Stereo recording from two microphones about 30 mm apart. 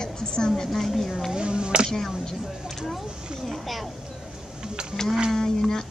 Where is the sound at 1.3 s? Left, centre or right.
Right.